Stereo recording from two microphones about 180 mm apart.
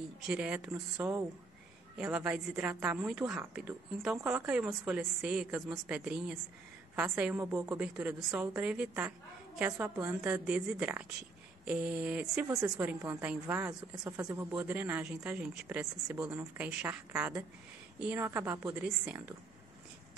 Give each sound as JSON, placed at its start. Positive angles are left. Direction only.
{"t": 0.3, "sound": "a woman's voice", "side_deg": -5}